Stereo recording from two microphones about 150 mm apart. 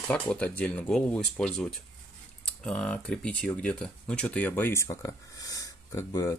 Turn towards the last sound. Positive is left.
turn(degrees=20)  # may be behind; listen again after turning